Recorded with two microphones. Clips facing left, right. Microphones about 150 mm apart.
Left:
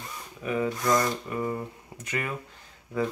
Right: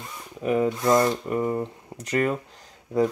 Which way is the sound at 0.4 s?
35° right (ahead or behind).